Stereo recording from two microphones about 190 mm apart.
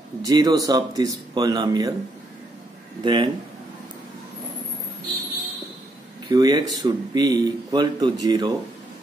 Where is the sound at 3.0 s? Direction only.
25° right (ahead or behind).